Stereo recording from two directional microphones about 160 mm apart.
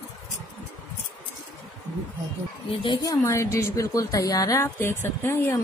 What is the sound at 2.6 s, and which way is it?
A woman's voice, 30° left (ahead or behind).